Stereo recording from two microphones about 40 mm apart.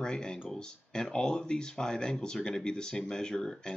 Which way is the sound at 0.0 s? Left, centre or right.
Centre.